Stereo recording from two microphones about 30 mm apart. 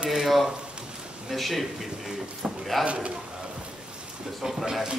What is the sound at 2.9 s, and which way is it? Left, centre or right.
Speech, right.